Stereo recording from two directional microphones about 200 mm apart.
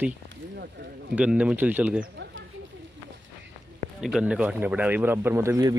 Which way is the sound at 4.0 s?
5° right (ahead or behind).